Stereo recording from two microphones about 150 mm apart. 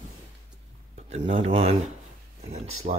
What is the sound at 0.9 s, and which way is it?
Speech, 45° right (ahead or behind).